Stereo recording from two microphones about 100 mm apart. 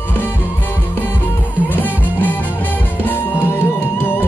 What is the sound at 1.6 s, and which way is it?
Music, 15° left (ahead or behind).